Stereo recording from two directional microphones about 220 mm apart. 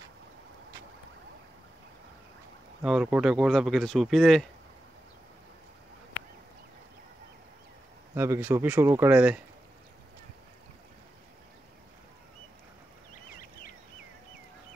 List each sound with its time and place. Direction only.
2.8 s speech: 5° right (ahead or behind)
8.1 s speech: 10° right (ahead or behind)
13.1 s a sound: 40° left (ahead or behind)